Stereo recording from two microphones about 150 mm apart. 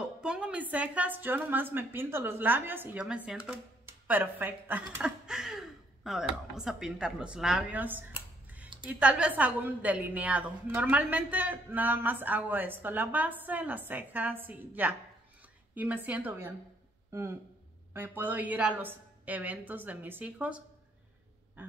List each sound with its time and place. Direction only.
0.0 s a woman's voice: 5° right (ahead or behind)